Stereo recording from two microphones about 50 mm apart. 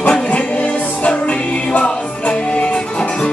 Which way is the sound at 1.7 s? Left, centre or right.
Left.